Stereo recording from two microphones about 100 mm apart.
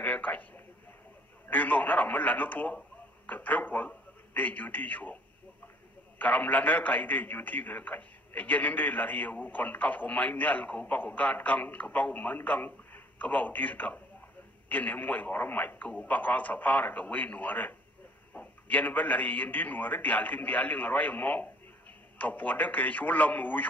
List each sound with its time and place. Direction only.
0.0 s a man's voice: 15° left (ahead or behind)
1.5 s a man's voice: 15° left (ahead or behind)